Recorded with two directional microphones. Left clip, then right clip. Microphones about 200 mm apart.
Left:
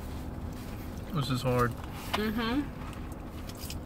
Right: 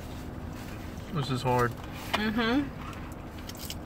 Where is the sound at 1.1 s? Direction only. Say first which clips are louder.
Right 2 dB; 20° left (ahead or behind).